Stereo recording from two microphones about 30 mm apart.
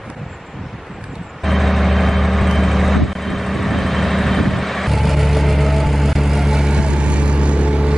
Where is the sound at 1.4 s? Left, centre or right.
Centre.